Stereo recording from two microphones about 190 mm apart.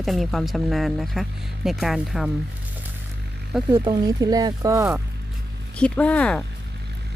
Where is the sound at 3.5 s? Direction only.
Centre (ahead or behind).